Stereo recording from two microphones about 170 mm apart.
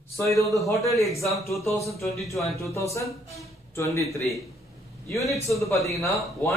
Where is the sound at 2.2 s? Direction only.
20° left (ahead or behind).